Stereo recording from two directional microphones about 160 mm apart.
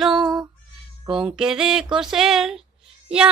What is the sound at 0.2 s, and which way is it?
Female singing, 25° right (ahead or behind).